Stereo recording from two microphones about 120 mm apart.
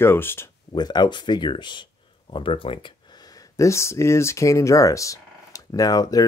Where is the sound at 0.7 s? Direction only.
35° left (ahead or behind).